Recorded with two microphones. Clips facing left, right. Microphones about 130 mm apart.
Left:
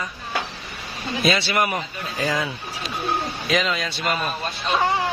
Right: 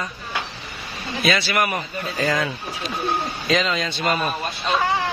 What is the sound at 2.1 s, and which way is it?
A man's voice, 5° left (ahead or behind).